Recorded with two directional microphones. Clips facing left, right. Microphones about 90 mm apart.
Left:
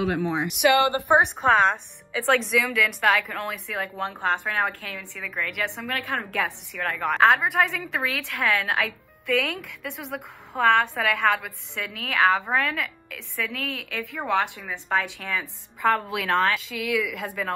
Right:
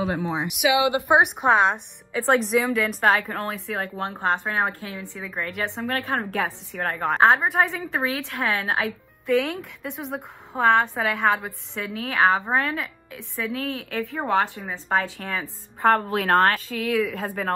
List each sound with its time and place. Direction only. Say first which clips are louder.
0.0 s a woman's voice: left 1 dB; 20° right (ahead or behind)
0.6 s speech: left 1 dB; 10° right (ahead or behind)
2.6 s a woman's voice: right 2 dB; 30° right (ahead or behind)
3.5 s a woman's voice: right 1 dB; 20° right (ahead or behind)
15.8 s a woman's voice: right 3 dB; 50° right (ahead or behind)